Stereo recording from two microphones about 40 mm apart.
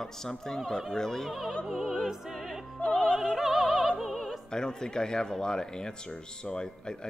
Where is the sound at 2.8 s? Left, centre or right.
Left.